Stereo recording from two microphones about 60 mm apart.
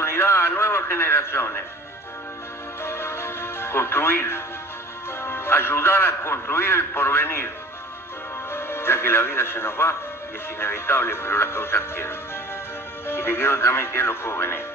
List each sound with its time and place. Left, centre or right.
0.0 s radio: left
2.8 s music: left
5.2 s a man's voice: left
8.5 s a man's voice: left